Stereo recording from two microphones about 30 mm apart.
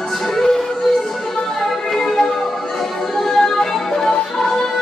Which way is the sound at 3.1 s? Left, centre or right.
Centre.